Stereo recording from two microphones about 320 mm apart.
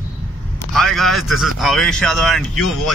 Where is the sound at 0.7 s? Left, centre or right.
Centre.